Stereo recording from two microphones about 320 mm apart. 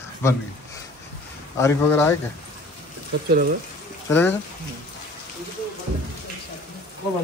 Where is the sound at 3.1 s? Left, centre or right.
Right.